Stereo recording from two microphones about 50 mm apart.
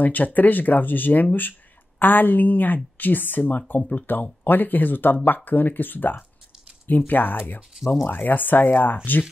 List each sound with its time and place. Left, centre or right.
0.0 s speech: left